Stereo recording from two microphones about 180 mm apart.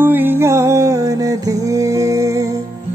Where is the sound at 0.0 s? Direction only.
10° right (ahead or behind).